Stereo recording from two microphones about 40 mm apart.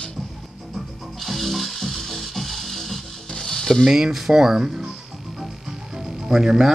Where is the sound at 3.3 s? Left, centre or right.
Centre.